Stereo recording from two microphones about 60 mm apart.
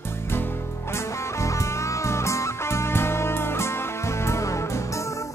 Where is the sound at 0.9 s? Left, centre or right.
Left.